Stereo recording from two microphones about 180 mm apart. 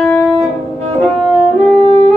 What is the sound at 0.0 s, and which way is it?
Music, 10° left (ahead or behind).